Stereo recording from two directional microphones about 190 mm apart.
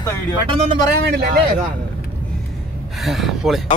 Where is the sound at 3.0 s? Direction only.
Centre (ahead or behind).